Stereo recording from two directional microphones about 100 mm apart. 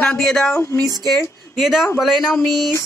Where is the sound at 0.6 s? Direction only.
25° left (ahead or behind).